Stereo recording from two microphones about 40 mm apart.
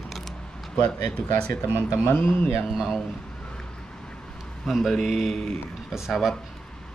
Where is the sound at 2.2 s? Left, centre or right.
Left.